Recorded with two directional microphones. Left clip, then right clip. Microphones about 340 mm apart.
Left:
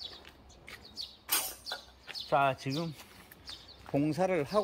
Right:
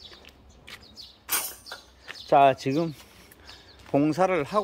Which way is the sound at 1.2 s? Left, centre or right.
Centre.